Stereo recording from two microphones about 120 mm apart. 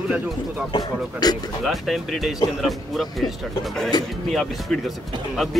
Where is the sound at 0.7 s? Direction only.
35° left (ahead or behind).